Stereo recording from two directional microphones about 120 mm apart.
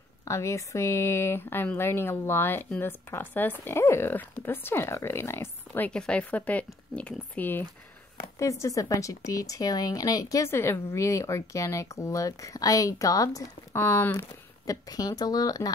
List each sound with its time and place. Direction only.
0.2 s speech: 25° left (ahead or behind)
5.9 s speech: 10° left (ahead or behind)
8.4 s speech: 25° left (ahead or behind)
13.7 s speech: 20° left (ahead or behind)
14.7 s speech: 30° left (ahead or behind)